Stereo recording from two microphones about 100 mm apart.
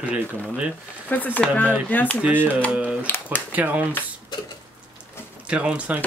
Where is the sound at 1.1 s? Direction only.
15° left (ahead or behind).